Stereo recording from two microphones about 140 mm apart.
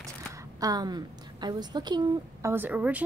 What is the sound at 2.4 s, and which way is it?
Speech, 15° right (ahead or behind).